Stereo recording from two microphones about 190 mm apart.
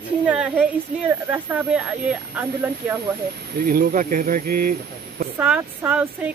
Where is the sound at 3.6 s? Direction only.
50° right (ahead or behind).